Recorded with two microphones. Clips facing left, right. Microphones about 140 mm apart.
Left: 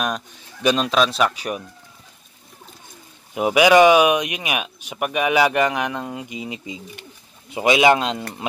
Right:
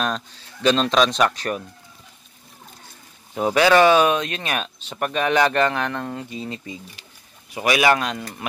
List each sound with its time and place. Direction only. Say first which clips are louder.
0.0 s speech: even; 15° left (ahead or behind)
3.3 s speech: left 2 dB; 15° left (ahead or behind)